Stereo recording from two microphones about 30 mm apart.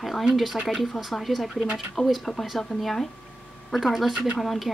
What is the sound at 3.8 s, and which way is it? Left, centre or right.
Speech, centre.